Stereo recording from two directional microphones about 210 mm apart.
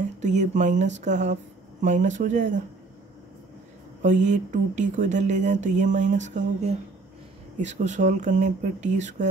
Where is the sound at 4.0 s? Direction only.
35° right (ahead or behind).